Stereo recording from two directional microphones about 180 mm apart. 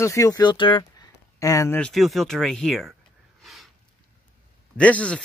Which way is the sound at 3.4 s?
Centre (ahead or behind).